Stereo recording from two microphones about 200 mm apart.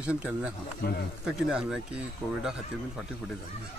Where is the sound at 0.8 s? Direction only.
50° left (ahead or behind).